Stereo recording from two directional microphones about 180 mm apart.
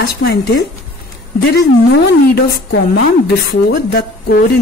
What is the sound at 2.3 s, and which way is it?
A woman's voice, 60° left (ahead or behind).